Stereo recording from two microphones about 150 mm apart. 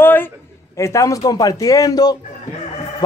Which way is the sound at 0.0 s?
15° left (ahead or behind).